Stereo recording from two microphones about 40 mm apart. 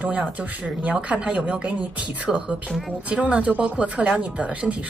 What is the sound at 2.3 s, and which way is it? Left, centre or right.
Speech, right.